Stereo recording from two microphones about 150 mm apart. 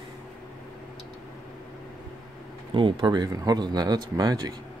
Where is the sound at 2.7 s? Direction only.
35° right (ahead or behind).